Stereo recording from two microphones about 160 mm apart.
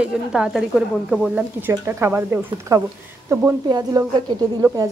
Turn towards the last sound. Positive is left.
turn(degrees=-20)  # may be behind; listen again after turning